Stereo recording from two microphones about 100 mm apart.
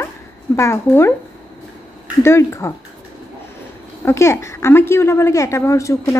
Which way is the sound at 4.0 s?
30° left (ahead or behind).